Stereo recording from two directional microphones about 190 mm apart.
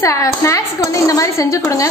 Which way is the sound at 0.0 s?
15° left (ahead or behind).